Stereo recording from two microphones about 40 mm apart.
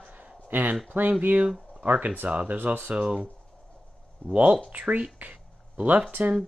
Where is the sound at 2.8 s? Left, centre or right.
Right.